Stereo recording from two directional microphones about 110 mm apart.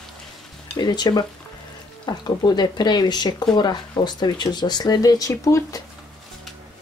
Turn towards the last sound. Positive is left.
turn(degrees=30)  # may be behind; listen again after turning